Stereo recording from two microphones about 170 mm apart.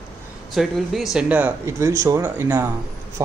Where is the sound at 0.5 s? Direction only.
Centre (ahead or behind).